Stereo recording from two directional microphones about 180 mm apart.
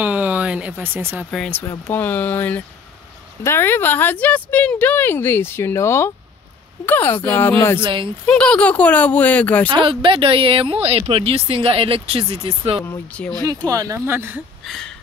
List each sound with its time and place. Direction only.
0.0 s a sound: 10° right (ahead or behind)
1.3 s speech: 5° left (ahead or behind)
7.8 s speech: 25° right (ahead or behind)
8.3 s speech: 5° left (ahead or behind)
9.7 s speech: 25° right (ahead or behind)
12.8 s speech: 10° left (ahead or behind)
13.3 s speech: 20° right (ahead or behind)
14.6 s a sound: centre (ahead or behind)